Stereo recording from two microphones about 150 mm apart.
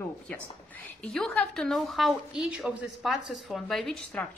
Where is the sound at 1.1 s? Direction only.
5° left (ahead or behind).